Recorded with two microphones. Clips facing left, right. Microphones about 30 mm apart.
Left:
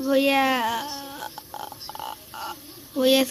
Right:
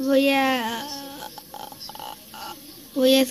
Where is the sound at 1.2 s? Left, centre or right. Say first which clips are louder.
Left 2 dB; left.